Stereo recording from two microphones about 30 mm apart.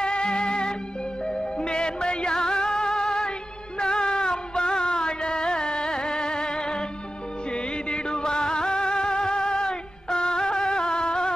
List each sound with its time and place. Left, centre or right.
0.0 s music: left